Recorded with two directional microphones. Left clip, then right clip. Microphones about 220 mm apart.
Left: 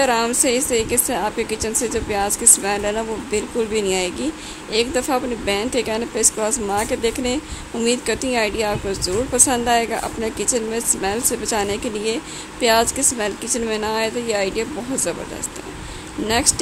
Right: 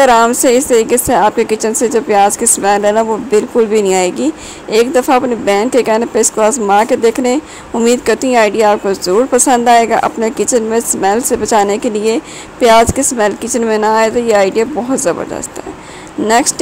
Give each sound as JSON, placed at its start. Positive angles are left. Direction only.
{"t": 0.0, "sound": "speech", "side_deg": -20}
{"t": 16.3, "sound": "speech", "side_deg": -25}